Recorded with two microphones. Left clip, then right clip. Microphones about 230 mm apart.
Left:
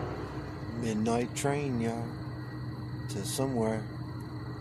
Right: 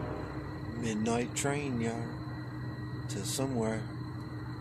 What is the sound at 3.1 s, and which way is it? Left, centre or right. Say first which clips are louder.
Speech: left 2 dB; left.